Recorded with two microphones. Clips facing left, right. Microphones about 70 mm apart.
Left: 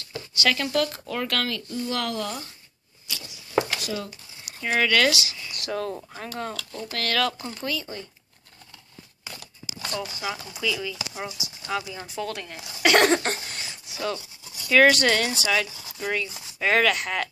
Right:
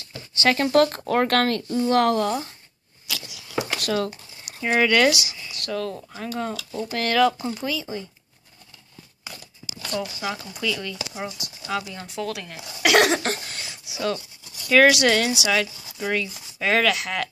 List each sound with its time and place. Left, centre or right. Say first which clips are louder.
0.3 s speech: right 5 dB; right
3.1 s a sound: right 4 dB; right
3.8 s speech: right 7 dB; right
4.6 s speech: right 3 dB; centre
5.7 s speech: right 1 dB; centre
5.9 s speech: right 4 dB; centre
7.0 s speech: right 6 dB; centre
10.2 s speech: right 1 dB; centre
11.7 s a sound: right 1 dB; centre
14.1 s speech: right 3 dB; centre